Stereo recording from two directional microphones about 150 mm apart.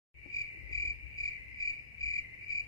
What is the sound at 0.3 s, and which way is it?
Cricket, 20° left (ahead or behind).